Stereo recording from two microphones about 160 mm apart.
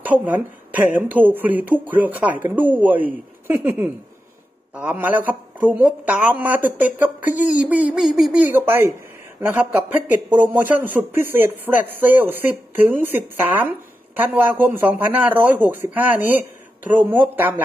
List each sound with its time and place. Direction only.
0.0 s speech: 10° right (ahead or behind)